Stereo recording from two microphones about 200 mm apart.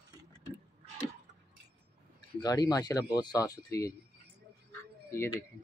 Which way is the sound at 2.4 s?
20° left (ahead or behind).